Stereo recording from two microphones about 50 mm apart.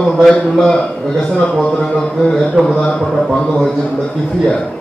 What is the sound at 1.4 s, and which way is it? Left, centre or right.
A man's voice, centre.